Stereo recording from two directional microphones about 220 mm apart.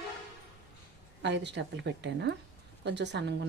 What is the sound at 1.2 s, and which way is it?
Speech, 55° right (ahead or behind).